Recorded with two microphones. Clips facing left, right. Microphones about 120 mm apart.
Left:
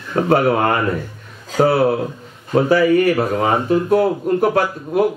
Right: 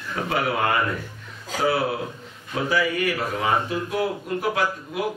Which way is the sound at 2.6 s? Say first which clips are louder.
Left 9 dB; 45° left (ahead or behind).